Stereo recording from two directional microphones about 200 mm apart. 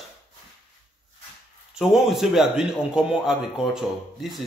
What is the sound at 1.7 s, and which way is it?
A man's voice, centre (ahead or behind).